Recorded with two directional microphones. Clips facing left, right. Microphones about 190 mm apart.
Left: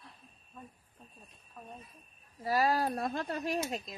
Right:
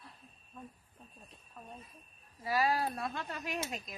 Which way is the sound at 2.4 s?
40° left (ahead or behind).